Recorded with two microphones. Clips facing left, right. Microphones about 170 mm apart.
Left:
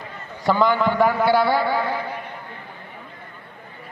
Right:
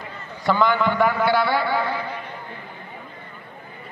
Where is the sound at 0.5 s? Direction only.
35° left (ahead or behind).